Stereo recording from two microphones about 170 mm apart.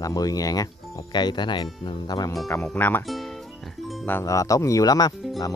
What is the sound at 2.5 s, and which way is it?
Speech, 10° left (ahead or behind).